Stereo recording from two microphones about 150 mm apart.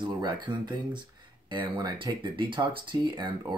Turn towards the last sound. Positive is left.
turn(degrees=-30)  # may be behind; listen again after turning